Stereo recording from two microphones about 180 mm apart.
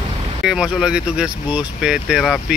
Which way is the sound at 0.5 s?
5° right (ahead or behind).